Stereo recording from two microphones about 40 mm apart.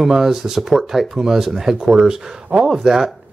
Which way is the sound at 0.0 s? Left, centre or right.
Centre.